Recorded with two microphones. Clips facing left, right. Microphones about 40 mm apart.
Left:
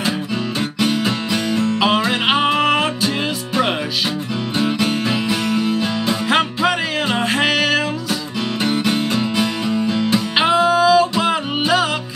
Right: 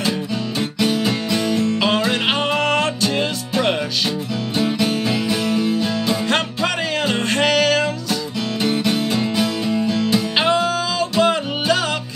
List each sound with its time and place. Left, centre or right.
0.0 s music: centre
4.6 s music: centre
6.2 s music: centre